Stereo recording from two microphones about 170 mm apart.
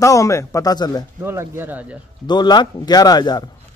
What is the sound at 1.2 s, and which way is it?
Speech, 15° right (ahead or behind).